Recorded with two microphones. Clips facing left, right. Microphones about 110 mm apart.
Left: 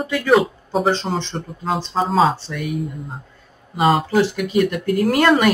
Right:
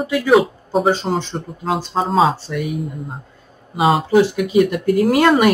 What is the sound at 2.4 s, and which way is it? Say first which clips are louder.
Speech: right 5 dB; 10° right (ahead or behind).